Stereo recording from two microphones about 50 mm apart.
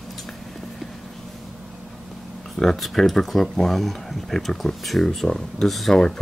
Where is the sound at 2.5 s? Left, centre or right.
Centre.